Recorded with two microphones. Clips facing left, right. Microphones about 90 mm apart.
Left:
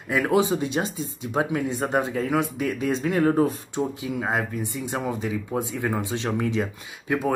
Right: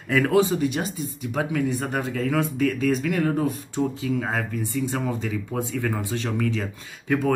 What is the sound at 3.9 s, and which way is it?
Speech, 20° left (ahead or behind).